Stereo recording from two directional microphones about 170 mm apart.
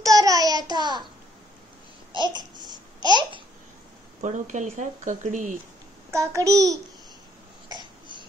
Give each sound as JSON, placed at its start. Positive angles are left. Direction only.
{"t": 0.0, "sound": "a sound", "side_deg": -20}
{"t": 2.1, "sound": "babbling", "side_deg": -25}
{"t": 4.2, "sound": "speech", "side_deg": -45}
{"t": 6.1, "sound": "a child's voice", "side_deg": -20}
{"t": 7.6, "sound": "throat clearing", "side_deg": -25}